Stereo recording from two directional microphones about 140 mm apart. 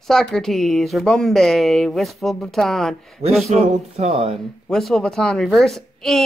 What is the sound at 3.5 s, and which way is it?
Speech, 50° right (ahead or behind).